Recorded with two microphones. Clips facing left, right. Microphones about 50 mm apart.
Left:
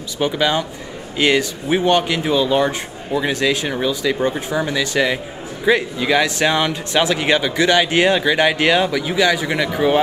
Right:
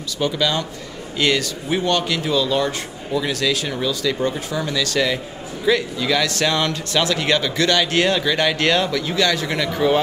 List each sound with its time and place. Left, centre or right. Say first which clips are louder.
0.2 s a man's voice: left 3 dB; left